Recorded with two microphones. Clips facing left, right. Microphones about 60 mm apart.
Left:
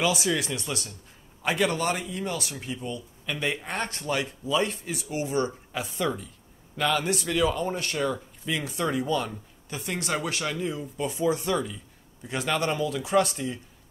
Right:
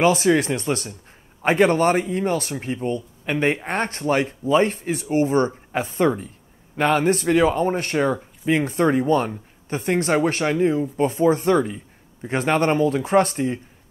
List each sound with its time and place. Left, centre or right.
0.0 s speech: right